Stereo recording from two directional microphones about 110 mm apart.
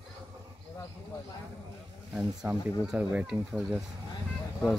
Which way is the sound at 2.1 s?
10° right (ahead or behind).